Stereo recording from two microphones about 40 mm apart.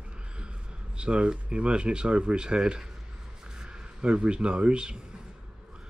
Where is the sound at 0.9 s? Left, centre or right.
Right.